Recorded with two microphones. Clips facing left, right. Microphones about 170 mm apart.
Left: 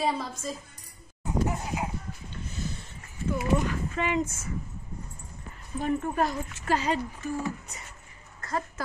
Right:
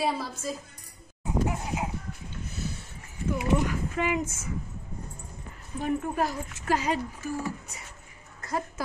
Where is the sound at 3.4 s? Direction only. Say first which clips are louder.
Even; 10° right (ahead or behind).